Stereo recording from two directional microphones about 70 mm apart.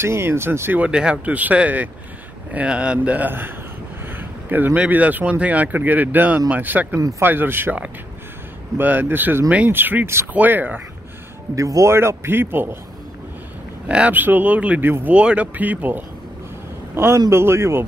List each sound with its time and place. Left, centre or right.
0.0 s speech: right
0.8 s speech: centre; by 7.7 s right
8.7 s speech: right
11.5 s speech: right
13.8 s speech: centre
14.8 s speech: right
15.1 s speech: centre
16.9 s a man's voice: right